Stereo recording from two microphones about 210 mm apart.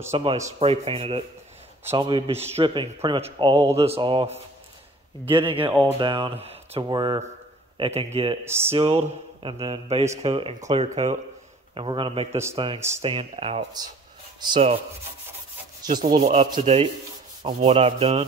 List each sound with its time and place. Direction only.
0.1 s speech: 25° right (ahead or behind)
8.5 s speech: 10° right (ahead or behind)
8.7 s speech: 25° right (ahead or behind)
16.1 s speech: 30° right (ahead or behind)